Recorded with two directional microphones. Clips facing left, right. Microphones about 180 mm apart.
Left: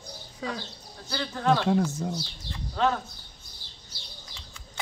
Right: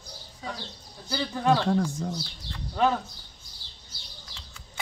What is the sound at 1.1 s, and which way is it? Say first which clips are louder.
Speech: right 1 dB; 10° right (ahead or behind).